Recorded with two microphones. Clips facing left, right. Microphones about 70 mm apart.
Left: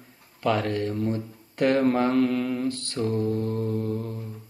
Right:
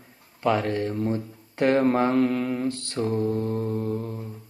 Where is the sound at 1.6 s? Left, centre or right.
Right.